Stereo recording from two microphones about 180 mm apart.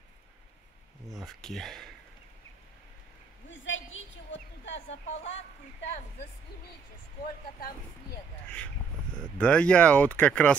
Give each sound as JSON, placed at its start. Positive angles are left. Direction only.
{"t": 1.0, "sound": "speech", "side_deg": 0}
{"t": 3.4, "sound": "a sound", "side_deg": 90}
{"t": 9.4, "sound": "speech", "side_deg": 5}